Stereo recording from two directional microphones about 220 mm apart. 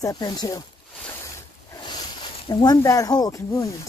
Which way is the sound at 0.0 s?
20° left (ahead or behind).